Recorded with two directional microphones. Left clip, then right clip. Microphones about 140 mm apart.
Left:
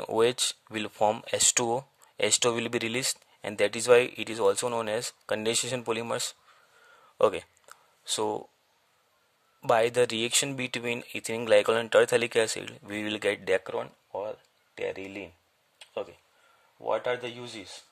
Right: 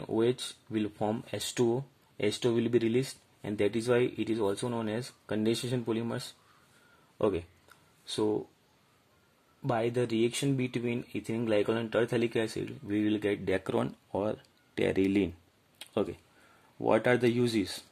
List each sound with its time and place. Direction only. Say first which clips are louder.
0.0 s speech: left 5 dB; 55° left (ahead or behind)
9.6 s speech: left 7 dB; 60° left (ahead or behind)
13.7 s speech: right 2 dB; 5° right (ahead or behind)
15.8 s a sound: right 4 dB; 10° right (ahead or behind)
16.8 s speech: right 3 dB; 15° right (ahead or behind)